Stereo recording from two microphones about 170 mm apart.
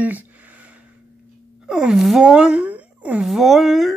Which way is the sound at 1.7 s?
5° right (ahead or behind).